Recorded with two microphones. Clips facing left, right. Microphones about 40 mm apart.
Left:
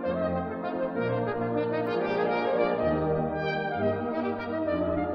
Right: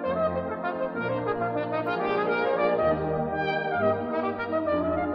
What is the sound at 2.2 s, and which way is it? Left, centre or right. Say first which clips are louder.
Brass instrument: right 1 dB; centre.